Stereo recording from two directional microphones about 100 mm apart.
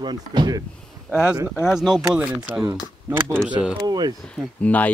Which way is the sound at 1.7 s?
5° right (ahead or behind).